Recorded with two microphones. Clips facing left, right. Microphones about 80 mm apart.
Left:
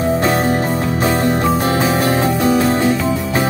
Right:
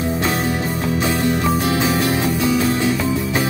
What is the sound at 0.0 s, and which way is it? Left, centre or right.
Music, left.